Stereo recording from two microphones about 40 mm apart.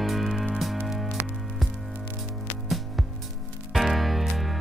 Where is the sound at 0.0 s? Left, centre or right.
Centre.